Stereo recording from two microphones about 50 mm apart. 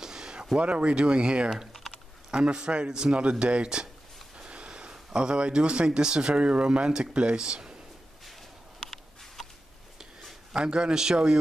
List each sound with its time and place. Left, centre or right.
0.0 s a sound: centre
0.6 s speech: right
1.7 s typing: centre
2.3 s a man's voice: centre
8.3 s a sound: centre
10.5 s a man's voice: centre